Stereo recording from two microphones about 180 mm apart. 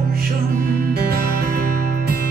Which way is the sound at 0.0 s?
55° right (ahead or behind).